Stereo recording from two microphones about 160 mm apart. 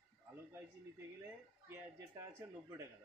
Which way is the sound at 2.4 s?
20° right (ahead or behind).